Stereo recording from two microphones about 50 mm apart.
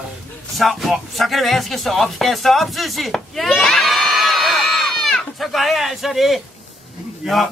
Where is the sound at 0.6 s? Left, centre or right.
Centre.